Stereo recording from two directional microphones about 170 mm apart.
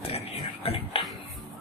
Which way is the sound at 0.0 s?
35° left (ahead or behind).